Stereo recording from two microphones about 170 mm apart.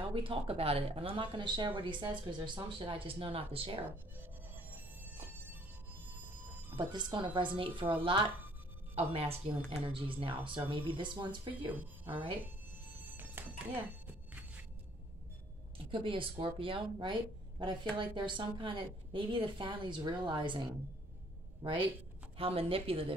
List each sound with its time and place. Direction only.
0.0 s speech: 30° right (ahead or behind)
4.6 s music: 10° right (ahead or behind)
6.8 s speech: 25° right (ahead or behind)
11.7 s speech: 10° right (ahead or behind)
12.1 s speech: 30° right (ahead or behind)
13.2 s music: 10° right (ahead or behind)
15.9 s speech: 30° right (ahead or behind)
22.4 s speech: 35° right (ahead or behind)